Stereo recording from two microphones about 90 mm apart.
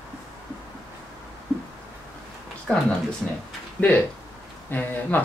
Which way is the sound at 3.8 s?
20° left (ahead or behind).